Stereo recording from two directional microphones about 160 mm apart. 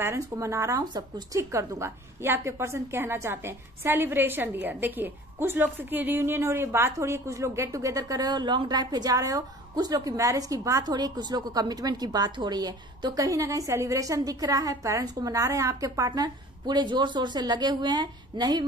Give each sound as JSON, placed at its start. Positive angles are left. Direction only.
{"t": 0.0, "sound": "speech", "side_deg": -20}